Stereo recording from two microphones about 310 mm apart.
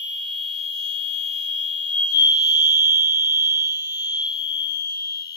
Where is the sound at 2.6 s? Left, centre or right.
Centre.